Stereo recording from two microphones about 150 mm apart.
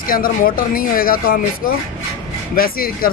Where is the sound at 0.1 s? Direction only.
70° left (ahead or behind).